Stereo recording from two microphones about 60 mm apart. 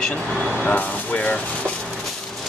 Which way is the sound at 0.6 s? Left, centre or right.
Left.